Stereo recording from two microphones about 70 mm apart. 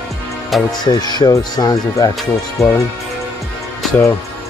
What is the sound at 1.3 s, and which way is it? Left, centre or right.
Speech, left.